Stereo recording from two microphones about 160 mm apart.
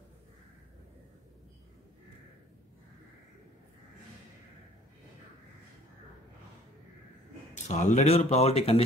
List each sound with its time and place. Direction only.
7.6 s speech: 45° left (ahead or behind)